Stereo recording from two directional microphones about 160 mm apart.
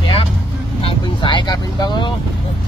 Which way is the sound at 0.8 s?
30° left (ahead or behind).